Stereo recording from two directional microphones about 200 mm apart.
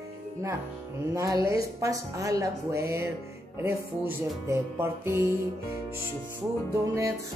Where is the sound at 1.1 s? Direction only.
15° right (ahead or behind).